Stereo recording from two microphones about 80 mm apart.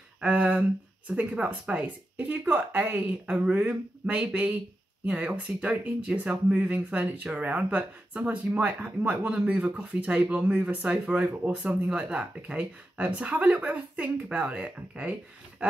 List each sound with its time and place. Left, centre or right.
0.2 s speech: centre